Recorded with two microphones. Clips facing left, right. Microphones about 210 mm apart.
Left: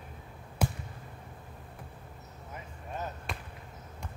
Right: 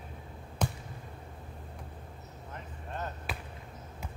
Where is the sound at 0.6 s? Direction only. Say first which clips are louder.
Left 1 dB; 10° left (ahead or behind).